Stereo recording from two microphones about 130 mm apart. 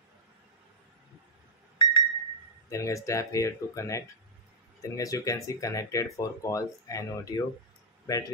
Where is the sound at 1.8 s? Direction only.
35° left (ahead or behind).